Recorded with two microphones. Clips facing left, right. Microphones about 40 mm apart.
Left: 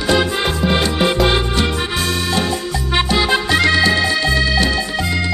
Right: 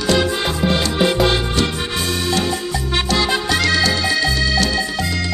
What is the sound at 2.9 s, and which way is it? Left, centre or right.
Music, centre.